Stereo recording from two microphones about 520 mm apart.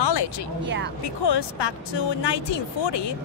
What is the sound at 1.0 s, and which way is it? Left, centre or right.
Speech, left.